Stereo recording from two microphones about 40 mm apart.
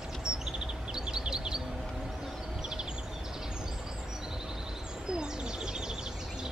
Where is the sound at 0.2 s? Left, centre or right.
Centre.